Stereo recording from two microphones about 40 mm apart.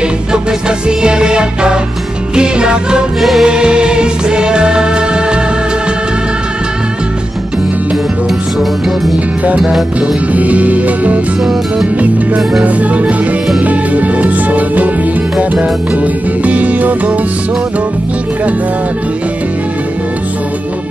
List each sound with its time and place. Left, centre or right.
0.3 s music: right
3.2 s music: centre
3.4 s music: right
9.9 s music: right
12.6 s music: right